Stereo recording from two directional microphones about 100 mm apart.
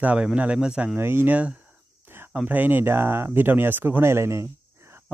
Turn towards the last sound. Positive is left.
turn(degrees=-25)  # may be behind; listen again after turning